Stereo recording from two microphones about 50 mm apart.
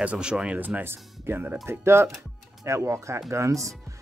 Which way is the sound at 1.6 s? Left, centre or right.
Right.